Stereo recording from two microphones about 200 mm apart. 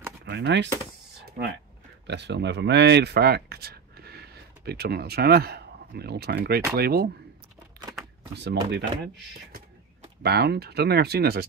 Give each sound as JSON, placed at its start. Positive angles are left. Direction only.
{"t": 0.2, "sound": "speech", "side_deg": -60}
{"t": 2.0, "sound": "speech", "side_deg": -60}
{"t": 8.4, "sound": "speech", "side_deg": -55}